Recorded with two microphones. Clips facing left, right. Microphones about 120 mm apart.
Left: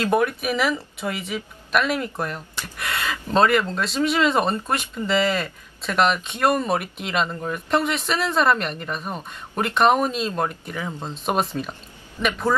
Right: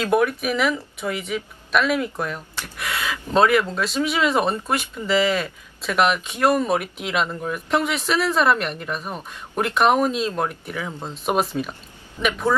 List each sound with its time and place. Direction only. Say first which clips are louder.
0.0 s speech: right 1 dB; centre (ahead or behind)